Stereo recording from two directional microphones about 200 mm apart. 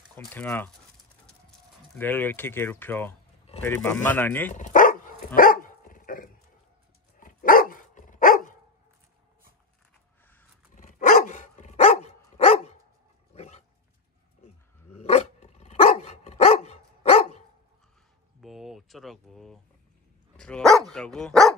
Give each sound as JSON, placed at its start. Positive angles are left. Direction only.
{"t": 0.1, "sound": "speech", "side_deg": 10}
{"t": 2.0, "sound": "speech", "side_deg": 10}
{"t": 4.6, "sound": "dog", "side_deg": 40}
{"t": 10.7, "sound": "dog", "side_deg": 40}
{"t": 15.0, "sound": "dog", "side_deg": 30}
{"t": 18.4, "sound": "a sound", "side_deg": 0}
{"t": 20.3, "sound": "dog", "side_deg": 5}